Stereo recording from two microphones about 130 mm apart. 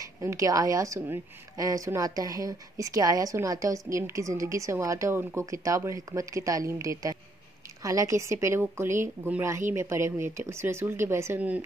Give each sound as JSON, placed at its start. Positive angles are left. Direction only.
{"t": 0.0, "sound": "a woman's voice", "side_deg": -25}